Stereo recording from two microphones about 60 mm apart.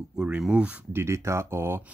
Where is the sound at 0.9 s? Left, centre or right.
Right.